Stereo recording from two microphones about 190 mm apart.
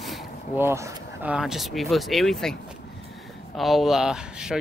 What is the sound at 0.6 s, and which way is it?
Speech, 15° right (ahead or behind).